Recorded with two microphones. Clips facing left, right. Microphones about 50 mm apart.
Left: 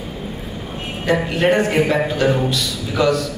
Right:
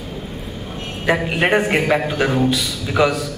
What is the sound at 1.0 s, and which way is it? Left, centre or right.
A man's voice, centre.